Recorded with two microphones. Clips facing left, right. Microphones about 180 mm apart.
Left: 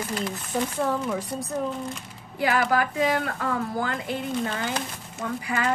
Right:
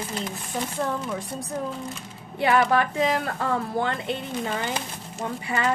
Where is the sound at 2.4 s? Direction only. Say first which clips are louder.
Right 2 dB; 25° right (ahead or behind).